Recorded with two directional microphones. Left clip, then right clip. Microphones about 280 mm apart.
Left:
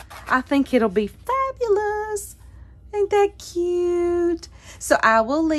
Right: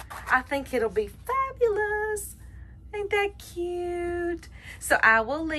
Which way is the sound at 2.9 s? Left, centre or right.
Centre.